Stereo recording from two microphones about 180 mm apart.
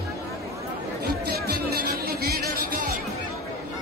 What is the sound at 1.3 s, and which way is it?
Music, 60° right (ahead or behind).